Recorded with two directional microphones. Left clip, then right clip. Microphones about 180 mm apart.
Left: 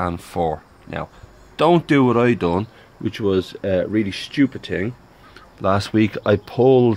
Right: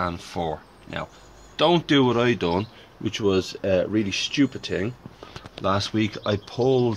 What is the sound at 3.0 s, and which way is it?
Speech, 35° left (ahead or behind).